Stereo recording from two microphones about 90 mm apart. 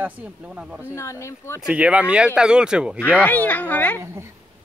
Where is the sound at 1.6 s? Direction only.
15° right (ahead or behind).